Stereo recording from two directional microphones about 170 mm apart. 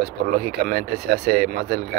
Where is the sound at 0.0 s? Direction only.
70° right (ahead or behind).